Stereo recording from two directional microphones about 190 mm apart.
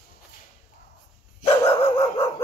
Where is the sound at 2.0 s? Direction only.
30° left (ahead or behind).